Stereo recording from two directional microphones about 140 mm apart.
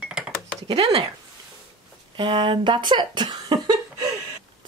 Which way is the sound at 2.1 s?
35° right (ahead or behind).